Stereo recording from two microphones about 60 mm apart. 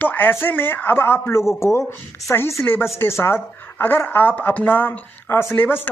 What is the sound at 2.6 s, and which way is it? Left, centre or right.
Speech, left.